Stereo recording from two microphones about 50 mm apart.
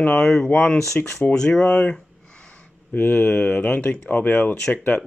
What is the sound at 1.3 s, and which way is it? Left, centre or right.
Speech, centre.